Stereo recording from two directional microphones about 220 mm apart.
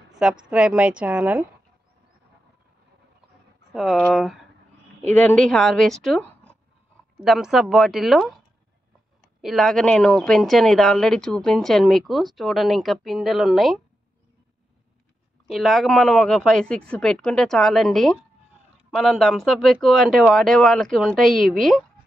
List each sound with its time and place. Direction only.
0.2 s a woman's voice: 5° right (ahead or behind)
3.7 s a woman's voice: centre (ahead or behind)
9.4 s a woman's voice: centre (ahead or behind)
15.4 s a woman's voice: centre (ahead or behind)